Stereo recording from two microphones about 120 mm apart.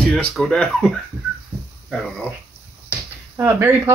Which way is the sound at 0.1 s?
5° left (ahead or behind).